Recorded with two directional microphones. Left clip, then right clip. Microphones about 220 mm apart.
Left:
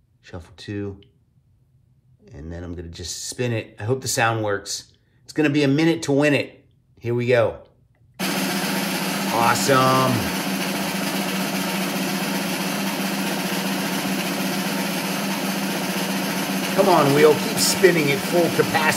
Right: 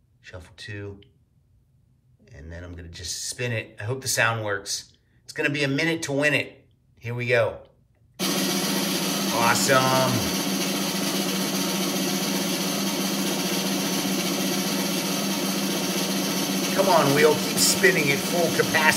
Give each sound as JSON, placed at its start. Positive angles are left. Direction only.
{"t": 0.2, "sound": "speech", "side_deg": 20}
{"t": 2.2, "sound": "speech", "side_deg": 20}
{"t": 8.2, "sound": "music", "side_deg": 0}
{"t": 16.9, "sound": "speech", "side_deg": 15}
{"t": 18.1, "sound": "speech", "side_deg": 0}
{"t": 18.5, "sound": "speech", "side_deg": 20}